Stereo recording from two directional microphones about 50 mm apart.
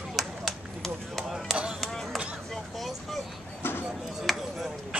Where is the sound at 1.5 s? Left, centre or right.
Right.